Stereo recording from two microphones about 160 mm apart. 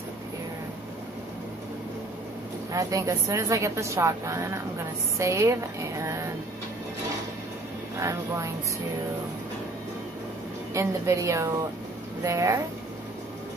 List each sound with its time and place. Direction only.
2.7 s speech: 20° right (ahead or behind)
8.0 s speech: 20° right (ahead or behind)
10.7 s speech: 20° right (ahead or behind)